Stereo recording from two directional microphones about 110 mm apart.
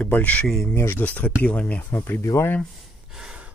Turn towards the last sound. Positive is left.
turn(degrees=-10)  # may be behind; listen again after turning